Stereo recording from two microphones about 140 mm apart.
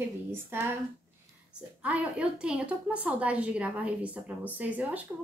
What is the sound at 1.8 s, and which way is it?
A woman's voice, 10° right (ahead or behind).